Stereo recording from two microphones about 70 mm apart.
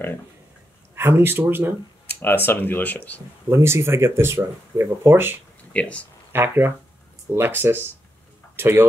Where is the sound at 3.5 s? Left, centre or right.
Right.